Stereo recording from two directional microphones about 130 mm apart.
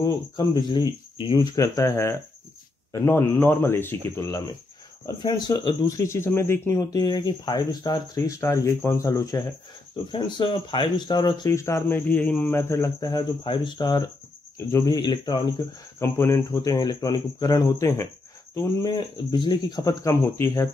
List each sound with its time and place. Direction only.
0.0 s speech: 35° left (ahead or behind)
5.0 s speech: 35° left (ahead or behind)
10.1 s speech: 40° left (ahead or behind)
16.0 s speech: 20° left (ahead or behind)
18.9 s speech: 35° left (ahead or behind); by 20.6 s 20° left (ahead or behind)